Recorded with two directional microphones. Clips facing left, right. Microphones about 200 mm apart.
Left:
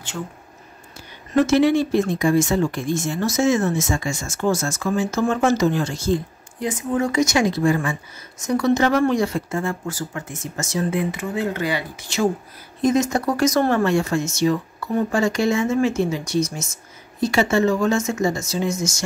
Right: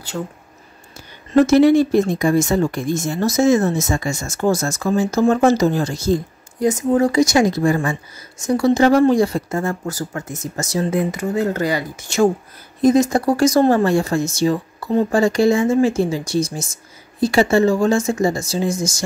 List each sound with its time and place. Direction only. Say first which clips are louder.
1.3 s speech: right 5 dB; 40° right (ahead or behind)
12.8 s speech: right 5 dB; 35° right (ahead or behind)